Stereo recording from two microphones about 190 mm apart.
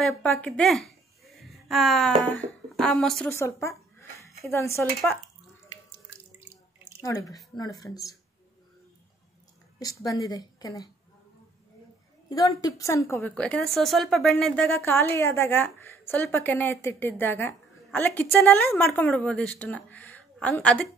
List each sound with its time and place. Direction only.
0.1 s speech: 5° left (ahead or behind)
3.3 s a woman's voice: 15° left (ahead or behind)
6.4 s drip: 10° right (ahead or behind)
7.0 s speech: 20° left (ahead or behind)
9.8 s a woman's voice: 20° left (ahead or behind)
12.3 s a woman's voice: 20° left (ahead or behind)